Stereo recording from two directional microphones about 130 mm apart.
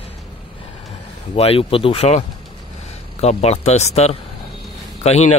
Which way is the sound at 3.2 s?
55° left (ahead or behind).